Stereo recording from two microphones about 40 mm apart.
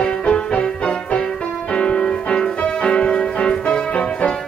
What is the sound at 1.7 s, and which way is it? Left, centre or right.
Music, left.